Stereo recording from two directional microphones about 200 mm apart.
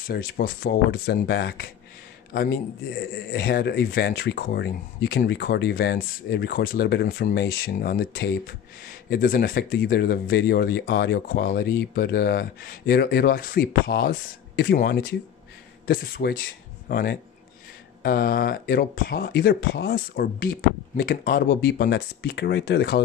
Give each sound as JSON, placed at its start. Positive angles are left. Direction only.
{"t": 0.0, "sound": "a man's voice", "side_deg": 50}